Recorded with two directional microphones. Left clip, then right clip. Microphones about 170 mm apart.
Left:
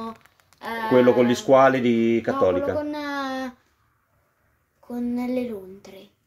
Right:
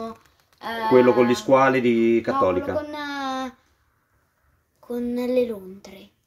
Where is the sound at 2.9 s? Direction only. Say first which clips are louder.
Even; 30° right (ahead or behind).